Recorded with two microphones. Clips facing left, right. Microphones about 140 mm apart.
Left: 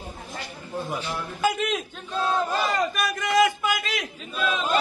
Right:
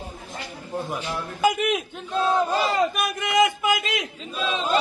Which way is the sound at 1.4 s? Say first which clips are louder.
Right 3 dB; 10° right (ahead or behind).